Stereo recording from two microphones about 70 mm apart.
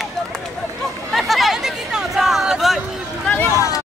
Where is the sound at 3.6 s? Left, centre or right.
Left.